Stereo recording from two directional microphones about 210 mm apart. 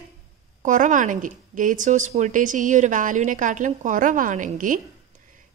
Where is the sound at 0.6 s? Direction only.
35° right (ahead or behind).